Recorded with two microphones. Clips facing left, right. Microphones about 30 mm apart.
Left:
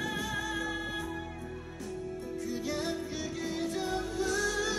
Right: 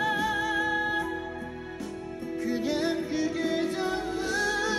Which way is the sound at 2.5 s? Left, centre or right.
Right.